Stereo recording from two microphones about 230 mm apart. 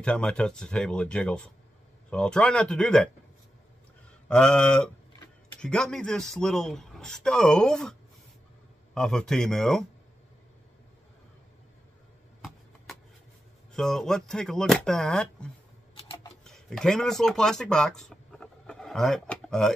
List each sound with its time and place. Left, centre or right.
0.0 s speech: centre
4.3 s speech: centre
8.9 s speech: centre
13.7 s speech: centre
16.0 s a sound: left
16.4 s speech: centre